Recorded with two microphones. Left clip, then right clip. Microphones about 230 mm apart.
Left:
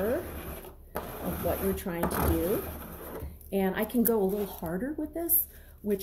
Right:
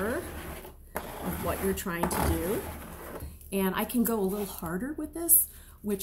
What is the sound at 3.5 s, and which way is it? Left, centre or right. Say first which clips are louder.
Speech: left 1 dB; centre.